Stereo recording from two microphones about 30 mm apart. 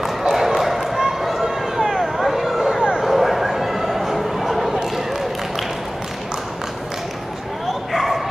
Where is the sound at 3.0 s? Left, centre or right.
Centre.